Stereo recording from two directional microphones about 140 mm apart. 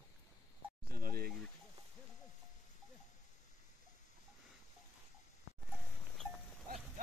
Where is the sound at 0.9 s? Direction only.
90° right.